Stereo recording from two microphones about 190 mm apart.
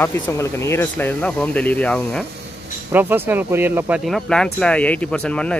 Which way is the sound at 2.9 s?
10° right (ahead or behind).